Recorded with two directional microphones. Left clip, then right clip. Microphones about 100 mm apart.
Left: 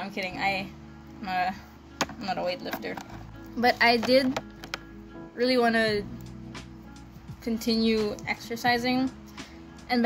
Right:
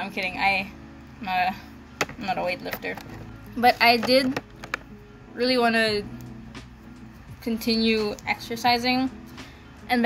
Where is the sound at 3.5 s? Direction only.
25° left (ahead or behind).